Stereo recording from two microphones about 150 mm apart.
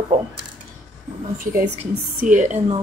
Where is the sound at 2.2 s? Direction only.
55° right (ahead or behind).